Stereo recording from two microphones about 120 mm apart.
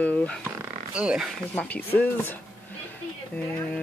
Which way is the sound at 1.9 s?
15° left (ahead or behind).